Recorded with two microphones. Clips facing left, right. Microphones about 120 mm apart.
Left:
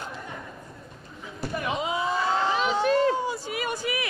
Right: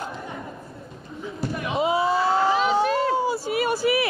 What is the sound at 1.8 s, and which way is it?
Slam, 30° right (ahead or behind).